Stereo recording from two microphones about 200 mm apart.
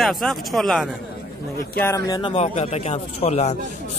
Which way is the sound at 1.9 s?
20° left (ahead or behind).